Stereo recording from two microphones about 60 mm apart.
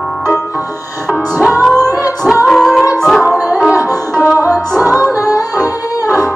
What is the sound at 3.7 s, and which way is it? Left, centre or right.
Music, right.